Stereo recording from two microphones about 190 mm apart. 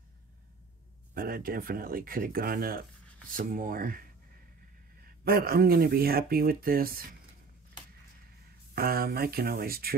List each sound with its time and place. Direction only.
1.1 s speech: 50° right (ahead or behind)
5.2 s speech: 50° right (ahead or behind)
8.7 s speech: 55° right (ahead or behind)